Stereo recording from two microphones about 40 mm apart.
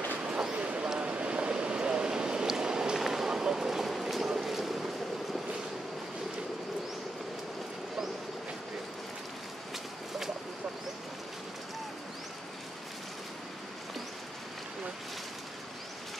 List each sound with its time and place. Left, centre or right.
0.2 s a sound: right
0.9 s vehicle: right
3.0 s boat: centre